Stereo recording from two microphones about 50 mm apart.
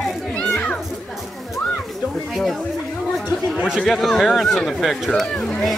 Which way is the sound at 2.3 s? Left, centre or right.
Centre.